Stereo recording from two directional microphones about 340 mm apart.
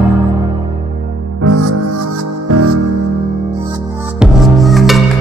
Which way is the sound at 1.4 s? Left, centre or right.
Right.